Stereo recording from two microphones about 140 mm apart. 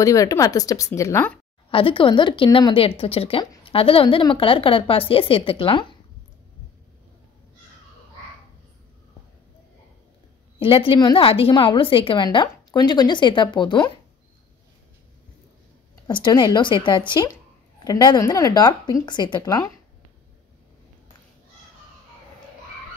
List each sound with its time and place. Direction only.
0.0 s speech: 25° left (ahead or behind)
1.7 s speech: 40° left (ahead or behind)
10.6 s speech: 40° left (ahead or behind)
16.1 s speech: 30° left (ahead or behind)